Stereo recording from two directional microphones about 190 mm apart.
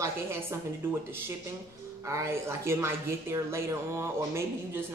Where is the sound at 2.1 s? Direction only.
15° right (ahead or behind).